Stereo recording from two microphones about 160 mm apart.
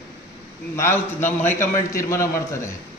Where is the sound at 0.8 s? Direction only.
15° left (ahead or behind).